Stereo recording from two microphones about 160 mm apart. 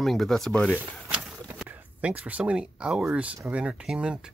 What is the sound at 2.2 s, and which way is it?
Speech, 5° right (ahead or behind).